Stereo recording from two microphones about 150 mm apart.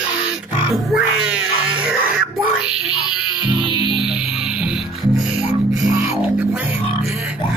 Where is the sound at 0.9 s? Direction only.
5° right (ahead or behind).